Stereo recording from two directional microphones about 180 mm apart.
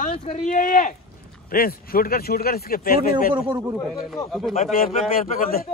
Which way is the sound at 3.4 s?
10° right (ahead or behind).